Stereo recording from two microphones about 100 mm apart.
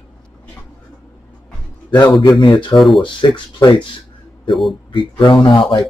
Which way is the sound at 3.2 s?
55° left (ahead or behind).